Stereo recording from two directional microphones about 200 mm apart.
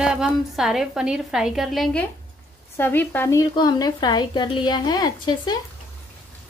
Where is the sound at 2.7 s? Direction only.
10° left (ahead or behind).